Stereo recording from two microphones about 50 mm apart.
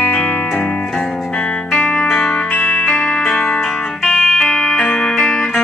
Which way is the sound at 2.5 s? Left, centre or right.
Left.